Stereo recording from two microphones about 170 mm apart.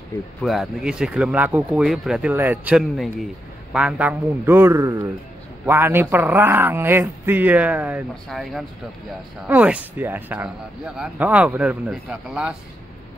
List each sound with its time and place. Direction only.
0.4 s speech: centre (ahead or behind)